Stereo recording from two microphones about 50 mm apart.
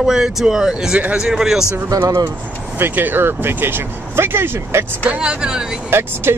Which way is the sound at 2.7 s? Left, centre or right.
Right.